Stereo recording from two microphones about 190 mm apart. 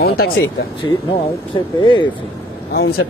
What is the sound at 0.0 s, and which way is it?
Speech, 55° left (ahead or behind).